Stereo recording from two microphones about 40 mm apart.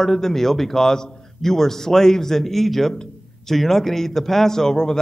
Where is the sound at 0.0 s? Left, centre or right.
Centre.